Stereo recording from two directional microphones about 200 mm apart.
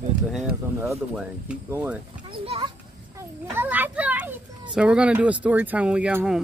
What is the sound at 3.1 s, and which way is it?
A child's voice, 10° right (ahead or behind).